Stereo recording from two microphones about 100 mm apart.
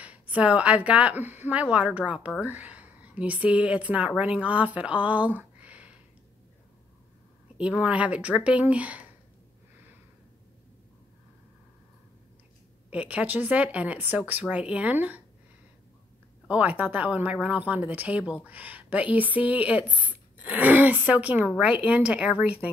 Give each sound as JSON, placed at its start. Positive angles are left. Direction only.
{"t": 0.0, "sound": "speech", "side_deg": -15}
{"t": 7.5, "sound": "speech", "side_deg": -10}
{"t": 12.9, "sound": "speech", "side_deg": -15}
{"t": 16.4, "sound": "speech", "side_deg": -15}